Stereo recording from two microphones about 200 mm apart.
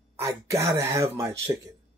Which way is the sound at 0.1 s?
15° right (ahead or behind).